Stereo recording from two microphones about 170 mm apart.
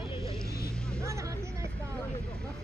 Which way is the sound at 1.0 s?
20° right (ahead or behind).